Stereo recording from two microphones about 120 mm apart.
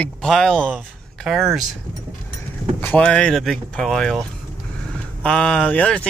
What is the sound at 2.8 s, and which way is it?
Speech, 10° left (ahead or behind).